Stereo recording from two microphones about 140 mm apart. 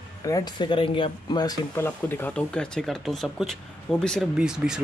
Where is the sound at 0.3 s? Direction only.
35° left (ahead or behind).